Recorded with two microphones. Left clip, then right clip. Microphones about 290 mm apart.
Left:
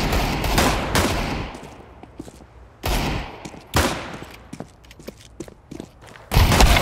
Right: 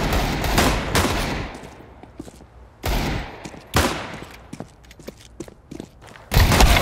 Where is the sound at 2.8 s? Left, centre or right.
Centre.